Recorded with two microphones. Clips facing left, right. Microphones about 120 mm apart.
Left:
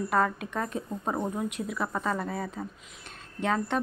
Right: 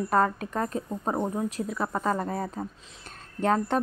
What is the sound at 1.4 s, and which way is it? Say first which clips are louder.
A woman's voice: right 2 dB; 35° right (ahead or behind).